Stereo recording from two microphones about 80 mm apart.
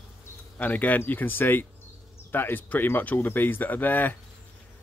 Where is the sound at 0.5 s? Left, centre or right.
Left.